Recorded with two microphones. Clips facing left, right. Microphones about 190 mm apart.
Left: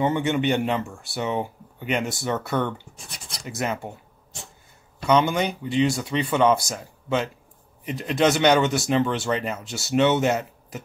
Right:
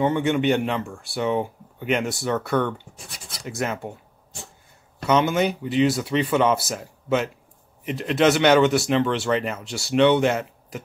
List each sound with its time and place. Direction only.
0.0 s speech: centre (ahead or behind)
3.3 s a sound: centre (ahead or behind)
5.0 s speech: 5° right (ahead or behind)